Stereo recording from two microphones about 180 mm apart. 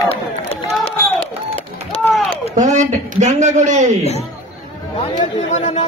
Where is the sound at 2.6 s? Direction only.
45° right (ahead or behind).